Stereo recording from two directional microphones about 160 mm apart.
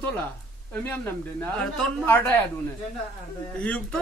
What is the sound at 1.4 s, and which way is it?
Speech, 10° left (ahead or behind).